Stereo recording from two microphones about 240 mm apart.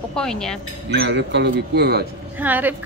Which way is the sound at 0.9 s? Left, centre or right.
Right.